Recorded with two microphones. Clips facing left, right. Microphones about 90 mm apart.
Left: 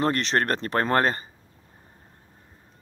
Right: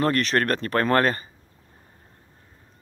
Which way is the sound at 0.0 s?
25° left (ahead or behind).